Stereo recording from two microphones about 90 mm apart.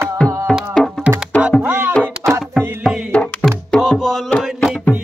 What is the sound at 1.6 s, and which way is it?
Music, 20° right (ahead or behind).